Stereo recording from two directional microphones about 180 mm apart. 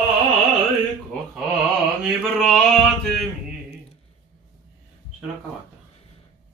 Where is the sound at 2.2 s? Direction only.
Centre (ahead or behind).